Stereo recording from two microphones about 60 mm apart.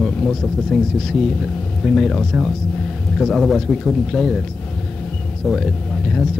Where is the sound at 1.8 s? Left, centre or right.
Centre.